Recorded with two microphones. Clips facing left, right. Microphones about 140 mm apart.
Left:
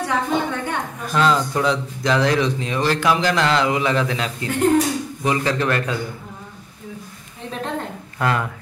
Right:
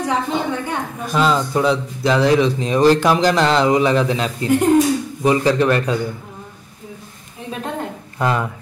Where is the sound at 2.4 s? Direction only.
35° right (ahead or behind).